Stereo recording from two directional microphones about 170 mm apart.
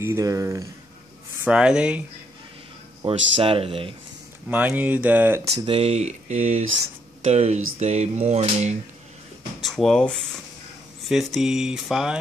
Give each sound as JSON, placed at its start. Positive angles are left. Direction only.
{"t": 0.0, "sound": "speech", "side_deg": -15}
{"t": 1.4, "sound": "a sound", "side_deg": -5}
{"t": 3.0, "sound": "speech", "side_deg": -35}
{"t": 4.5, "sound": "speech", "side_deg": -10}
{"t": 5.7, "sound": "speech", "side_deg": -35}
{"t": 9.6, "sound": "a sound", "side_deg": 0}